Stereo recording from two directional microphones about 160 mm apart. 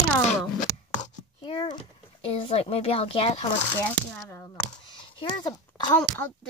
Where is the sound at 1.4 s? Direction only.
35° left (ahead or behind).